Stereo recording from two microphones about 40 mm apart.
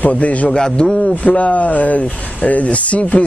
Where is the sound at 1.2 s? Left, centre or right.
Left.